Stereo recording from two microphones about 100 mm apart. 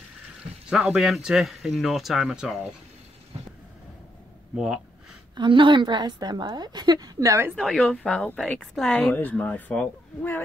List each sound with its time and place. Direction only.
0.7 s speech: 5° right (ahead or behind)
5.3 s a woman's voice: 55° right (ahead or behind)
7.2 s a woman's voice: 30° right (ahead or behind)
7.5 s speech: 5° left (ahead or behind)
9.1 s speech: 15° left (ahead or behind)